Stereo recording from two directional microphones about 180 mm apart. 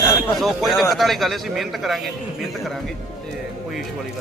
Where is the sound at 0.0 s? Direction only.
15° left (ahead or behind).